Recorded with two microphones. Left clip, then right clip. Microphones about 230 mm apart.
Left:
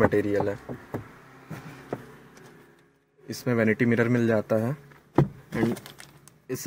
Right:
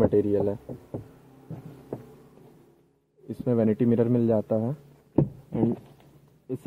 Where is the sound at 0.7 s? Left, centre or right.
Left.